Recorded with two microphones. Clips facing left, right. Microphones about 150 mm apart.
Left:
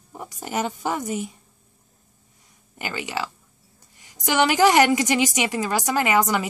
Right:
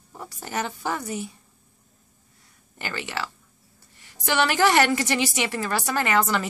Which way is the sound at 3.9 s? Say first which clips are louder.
Left 3 dB; 15° left (ahead or behind).